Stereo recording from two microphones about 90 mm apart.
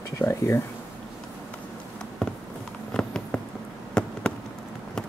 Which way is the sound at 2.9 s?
10° left (ahead or behind).